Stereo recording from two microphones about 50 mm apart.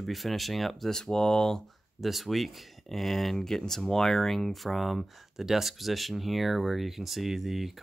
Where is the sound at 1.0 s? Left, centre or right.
Centre.